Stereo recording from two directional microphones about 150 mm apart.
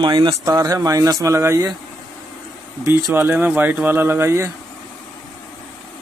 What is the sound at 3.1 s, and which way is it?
Speech, 15° right (ahead or behind).